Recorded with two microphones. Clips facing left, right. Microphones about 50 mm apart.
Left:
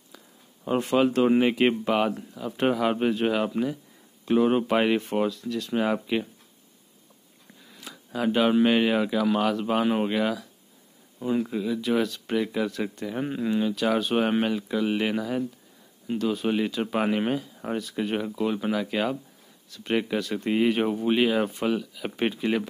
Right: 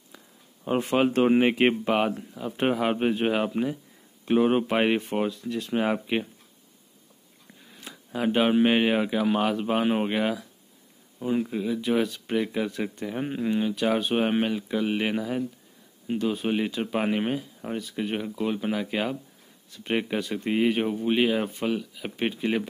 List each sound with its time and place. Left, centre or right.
0.9 s speech: right; by 5.3 s centre
5.3 s speech: right
8.1 s speech: centre